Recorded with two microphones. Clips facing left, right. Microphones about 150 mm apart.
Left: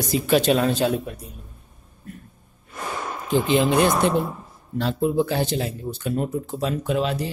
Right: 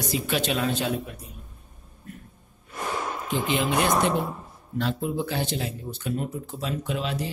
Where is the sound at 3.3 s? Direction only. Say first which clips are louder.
Left 7 dB; 30° left (ahead or behind).